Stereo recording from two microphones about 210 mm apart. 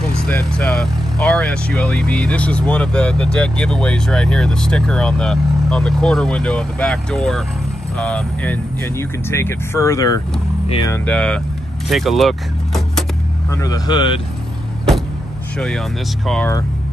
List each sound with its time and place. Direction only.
0.1 s speech: 5° left (ahead or behind)
10.9 s speech: 5° left (ahead or behind)
13.5 s speech: 15° left (ahead or behind)
15.5 s speech: 5° left (ahead or behind)